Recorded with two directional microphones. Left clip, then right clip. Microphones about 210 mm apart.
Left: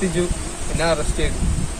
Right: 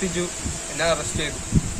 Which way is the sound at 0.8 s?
5° left (ahead or behind).